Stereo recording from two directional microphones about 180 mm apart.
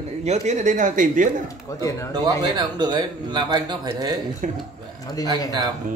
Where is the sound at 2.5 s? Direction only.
25° right (ahead or behind).